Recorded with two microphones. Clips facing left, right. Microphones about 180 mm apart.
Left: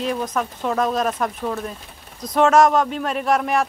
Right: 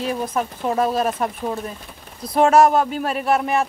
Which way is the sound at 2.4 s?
10° right (ahead or behind).